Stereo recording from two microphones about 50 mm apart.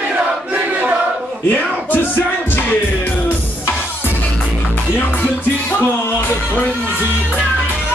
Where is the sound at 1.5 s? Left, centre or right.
Left.